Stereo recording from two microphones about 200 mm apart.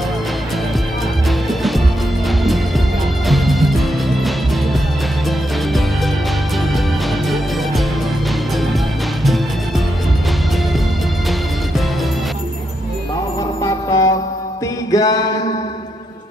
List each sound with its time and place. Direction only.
1.5 s music: centre (ahead or behind)
3.3 s music: centre (ahead or behind)
13.6 s music: 15° left (ahead or behind)